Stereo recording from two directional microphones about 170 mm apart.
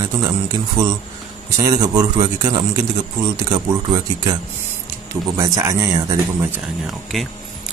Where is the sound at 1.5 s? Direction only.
20° right (ahead or behind).